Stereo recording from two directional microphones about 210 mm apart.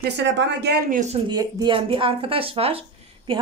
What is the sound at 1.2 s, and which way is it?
A woman's voice, 20° right (ahead or behind).